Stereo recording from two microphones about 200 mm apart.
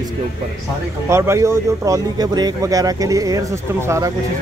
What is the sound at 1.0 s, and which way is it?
Speech, 15° right (ahead or behind).